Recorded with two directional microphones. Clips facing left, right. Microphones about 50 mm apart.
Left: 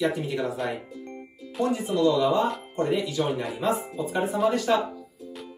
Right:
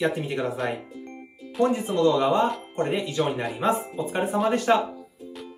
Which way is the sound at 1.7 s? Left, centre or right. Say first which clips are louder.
Left 3 dB; right.